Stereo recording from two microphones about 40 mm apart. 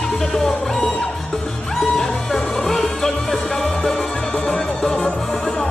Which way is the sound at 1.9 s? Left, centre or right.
Centre.